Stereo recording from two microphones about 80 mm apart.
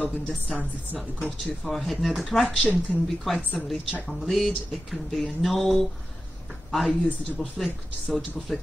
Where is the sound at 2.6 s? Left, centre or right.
Centre.